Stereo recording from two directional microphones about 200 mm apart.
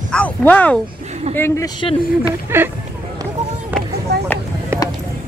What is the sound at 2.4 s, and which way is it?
Speech, 10° right (ahead or behind).